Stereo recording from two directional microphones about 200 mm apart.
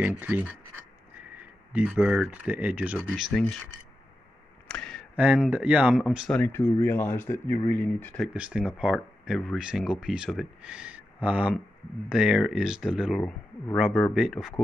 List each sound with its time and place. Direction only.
0.0 s speech: 10° right (ahead or behind)
1.7 s speech: 5° right (ahead or behind)
4.6 s a sound: 5° left (ahead or behind)
5.2 s speech: 5° right (ahead or behind)
8.3 s speech: 5° right (ahead or behind)